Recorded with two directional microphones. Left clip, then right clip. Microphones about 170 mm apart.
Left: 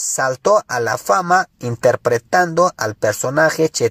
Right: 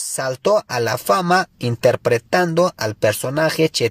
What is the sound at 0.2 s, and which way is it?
Speech, 25° right (ahead or behind).